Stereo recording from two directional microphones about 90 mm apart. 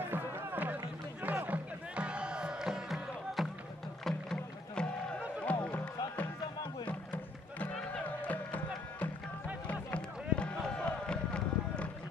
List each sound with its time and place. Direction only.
0.1 s music: 25° right (ahead or behind); by 3.4 s 5° right (ahead or behind)
4.0 s rowboat: 10° left (ahead or behind)
5.4 s music: 15° left (ahead or behind)
6.9 s music: 15° left (ahead or behind)
9.7 s a sound: 15° left (ahead or behind)